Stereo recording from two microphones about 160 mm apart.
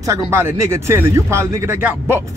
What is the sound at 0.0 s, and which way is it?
Speech, 20° right (ahead or behind).